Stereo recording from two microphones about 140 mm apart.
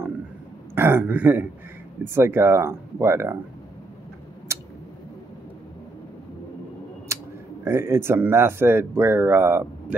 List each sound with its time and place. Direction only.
0.7 s speech: 15° right (ahead or behind)
4.5 s tick: 20° right (ahead or behind)
7.6 s speech: 15° right (ahead or behind)